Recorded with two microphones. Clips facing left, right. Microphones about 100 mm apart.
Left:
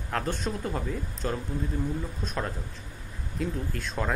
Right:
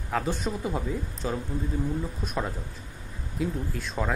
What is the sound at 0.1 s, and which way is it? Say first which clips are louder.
Speech: right 2 dB; 5° right (ahead or behind).